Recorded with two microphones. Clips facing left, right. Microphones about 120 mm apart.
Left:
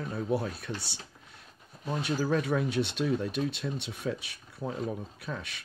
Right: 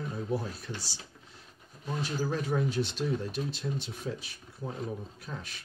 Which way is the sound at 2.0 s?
70° left (ahead or behind).